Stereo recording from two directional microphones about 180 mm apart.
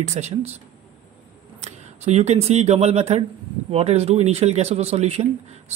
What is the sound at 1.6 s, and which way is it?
Speech, 35° right (ahead or behind).